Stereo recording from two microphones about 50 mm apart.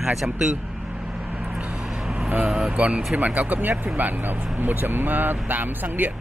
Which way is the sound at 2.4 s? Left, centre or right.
Centre.